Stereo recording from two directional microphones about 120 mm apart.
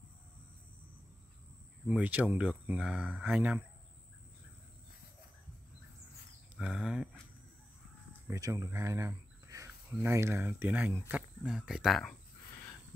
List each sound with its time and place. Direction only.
1.9 s speech: 15° right (ahead or behind)
6.5 s speech: 10° right (ahead or behind)
8.3 s speech: 30° right (ahead or behind); by 12.0 s 5° right (ahead or behind)